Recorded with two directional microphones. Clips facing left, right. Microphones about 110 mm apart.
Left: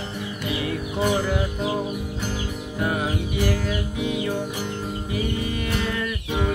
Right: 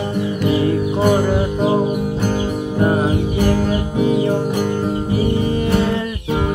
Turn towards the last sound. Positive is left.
turn(degrees=-30)  # may be behind; listen again after turning